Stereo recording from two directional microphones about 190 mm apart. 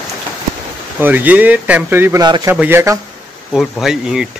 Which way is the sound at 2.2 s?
20° right (ahead or behind).